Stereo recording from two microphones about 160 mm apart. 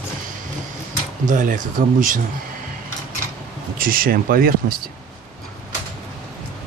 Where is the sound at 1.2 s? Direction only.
55° right (ahead or behind).